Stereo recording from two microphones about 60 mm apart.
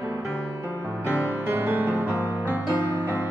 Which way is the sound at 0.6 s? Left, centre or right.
Right.